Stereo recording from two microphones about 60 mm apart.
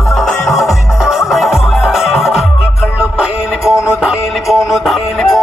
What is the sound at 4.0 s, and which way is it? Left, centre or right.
Music, centre.